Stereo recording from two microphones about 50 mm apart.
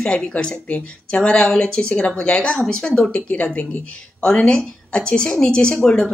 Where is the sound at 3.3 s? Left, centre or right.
Left.